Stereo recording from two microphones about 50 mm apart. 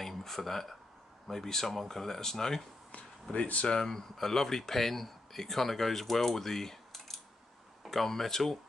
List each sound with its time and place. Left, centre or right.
0.0 s a sound: centre
1.3 s speech: centre
3.3 s speech: left
3.6 s speech: centre